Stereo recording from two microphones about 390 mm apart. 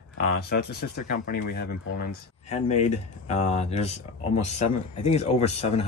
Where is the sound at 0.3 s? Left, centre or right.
Left.